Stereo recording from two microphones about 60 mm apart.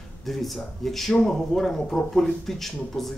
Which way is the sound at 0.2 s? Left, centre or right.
Centre.